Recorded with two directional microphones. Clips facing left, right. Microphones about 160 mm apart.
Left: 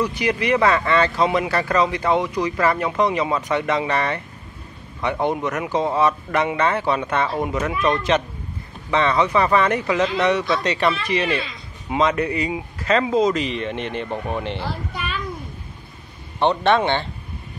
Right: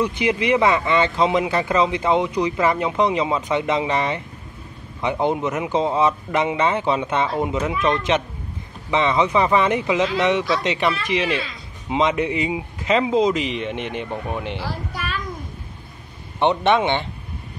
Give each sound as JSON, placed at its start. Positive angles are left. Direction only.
{"t": 0.0, "sound": "speech", "side_deg": -25}
{"t": 11.2, "sound": "speech", "side_deg": 0}
{"t": 11.9, "sound": "speech", "side_deg": -20}
{"t": 16.3, "sound": "speech", "side_deg": -20}